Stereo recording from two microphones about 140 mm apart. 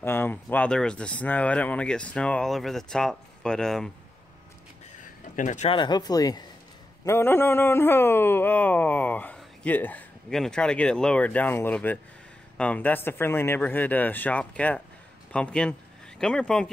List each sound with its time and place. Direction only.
0.0 s speech: 15° left (ahead or behind)
5.3 s speech: 60° left (ahead or behind)
5.7 s speech: 30° left (ahead or behind); by 16.7 s 5° left (ahead or behind)